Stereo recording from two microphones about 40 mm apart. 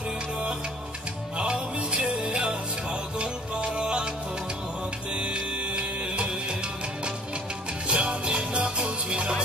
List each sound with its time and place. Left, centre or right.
1.4 s music: right
5.1 s music: right
7.9 s music: right